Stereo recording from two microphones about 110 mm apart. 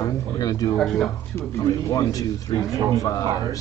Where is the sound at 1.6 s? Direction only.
30° left (ahead or behind).